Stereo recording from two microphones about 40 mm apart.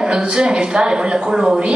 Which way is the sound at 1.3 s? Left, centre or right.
Centre.